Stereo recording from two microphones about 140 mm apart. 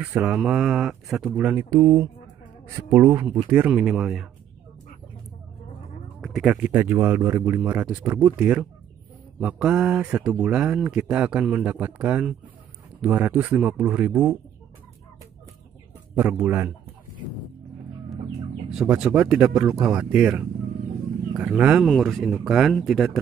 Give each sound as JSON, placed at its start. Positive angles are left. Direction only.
{"t": 0.0, "sound": "speech", "side_deg": -10}
{"t": 1.7, "sound": "speech", "side_deg": -20}
{"t": 6.2, "sound": "a sound", "side_deg": 0}
{"t": 6.5, "sound": "speech", "side_deg": -10}
{"t": 16.2, "sound": "speech", "side_deg": -10}
{"t": 18.7, "sound": "speech", "side_deg": -5}